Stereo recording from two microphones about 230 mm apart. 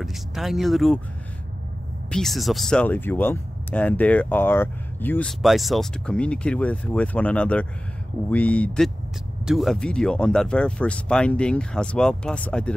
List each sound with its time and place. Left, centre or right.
0.0 s speech: centre
2.0 s speech: centre